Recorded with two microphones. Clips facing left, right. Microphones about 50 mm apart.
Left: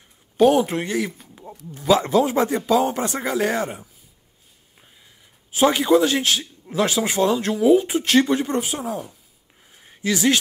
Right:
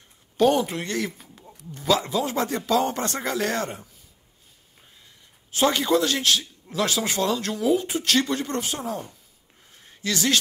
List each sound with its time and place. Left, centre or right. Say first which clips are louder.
0.4 s speech: left 4 dB; centre
0.8 s speech: left 3 dB; centre
2.0 s a man's voice: left 7 dB; left
2.2 s a man's voice: left 5 dB; centre
5.5 s a man's voice: left 4 dB; centre
9.8 s a sound: left 4 dB; centre